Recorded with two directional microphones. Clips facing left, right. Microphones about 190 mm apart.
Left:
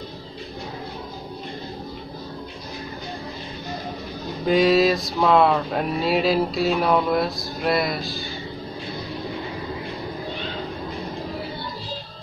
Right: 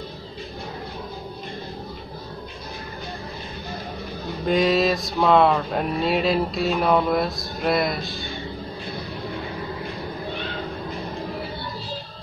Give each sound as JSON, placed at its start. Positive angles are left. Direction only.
{"t": 4.5, "sound": "speech", "side_deg": 0}